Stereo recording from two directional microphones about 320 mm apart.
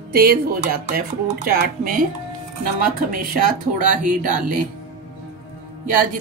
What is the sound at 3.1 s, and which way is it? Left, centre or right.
Speech, right.